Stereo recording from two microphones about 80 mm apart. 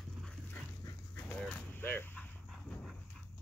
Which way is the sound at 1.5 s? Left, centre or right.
Left.